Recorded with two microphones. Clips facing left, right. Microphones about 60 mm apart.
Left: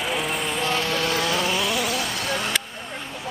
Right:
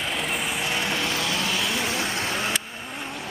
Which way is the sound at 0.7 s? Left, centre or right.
Right.